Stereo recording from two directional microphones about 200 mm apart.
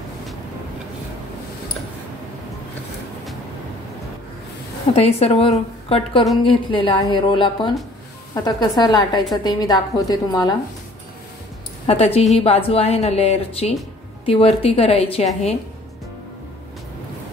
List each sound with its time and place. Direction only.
4.9 s a woman's voice: 30° left (ahead or behind)
11.8 s a woman's voice: 30° left (ahead or behind)